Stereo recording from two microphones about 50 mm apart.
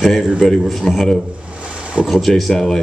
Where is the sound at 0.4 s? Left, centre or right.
Centre.